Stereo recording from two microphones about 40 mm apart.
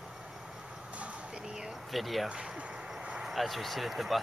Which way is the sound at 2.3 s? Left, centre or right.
Right.